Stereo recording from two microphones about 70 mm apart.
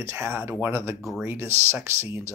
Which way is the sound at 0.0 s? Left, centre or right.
Right.